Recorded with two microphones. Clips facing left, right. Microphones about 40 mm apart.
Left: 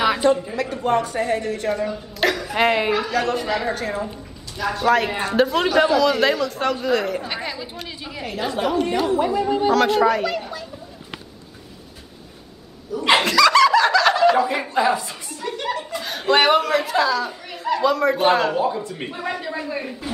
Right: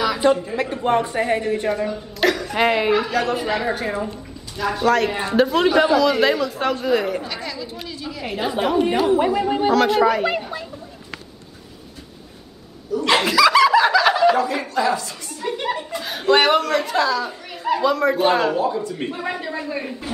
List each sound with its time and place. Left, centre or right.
0.6 s speech: centre
1.7 s a woman's voice: centre
7.2 s chatter: left
8.3 s a woman's voice: centre
9.7 s a man's voice: centre
12.9 s a sound: centre
13.2 s snicker: centre
14.4 s speech: centre
15.4 s a man's voice: centre